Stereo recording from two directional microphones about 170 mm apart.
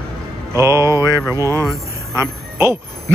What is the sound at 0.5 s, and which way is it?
Music, 15° right (ahead or behind).